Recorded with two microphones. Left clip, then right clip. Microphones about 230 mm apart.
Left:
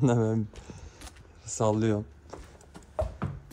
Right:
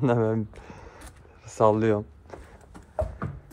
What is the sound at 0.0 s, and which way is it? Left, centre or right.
Speech, centre.